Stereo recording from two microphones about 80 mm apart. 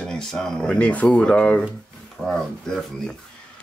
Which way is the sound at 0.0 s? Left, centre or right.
Centre.